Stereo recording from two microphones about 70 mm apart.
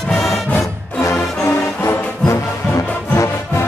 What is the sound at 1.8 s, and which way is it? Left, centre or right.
Music, left.